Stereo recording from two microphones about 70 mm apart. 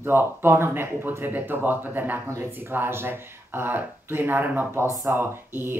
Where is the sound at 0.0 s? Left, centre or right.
Right.